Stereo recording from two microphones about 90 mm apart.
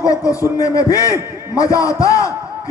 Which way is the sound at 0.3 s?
40° left (ahead or behind).